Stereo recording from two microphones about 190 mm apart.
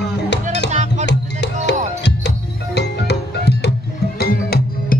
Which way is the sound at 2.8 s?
60° left (ahead or behind).